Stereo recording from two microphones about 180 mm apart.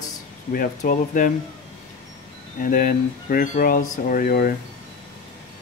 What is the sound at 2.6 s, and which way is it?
Speech, 50° left (ahead or behind).